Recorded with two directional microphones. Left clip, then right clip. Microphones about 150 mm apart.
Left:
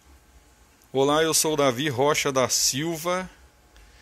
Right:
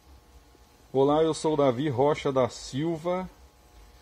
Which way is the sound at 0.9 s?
5° right (ahead or behind).